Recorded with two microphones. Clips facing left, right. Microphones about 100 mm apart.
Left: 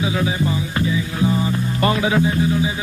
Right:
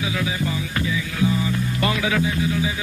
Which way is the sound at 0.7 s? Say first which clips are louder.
Left 2 dB; 30° left (ahead or behind).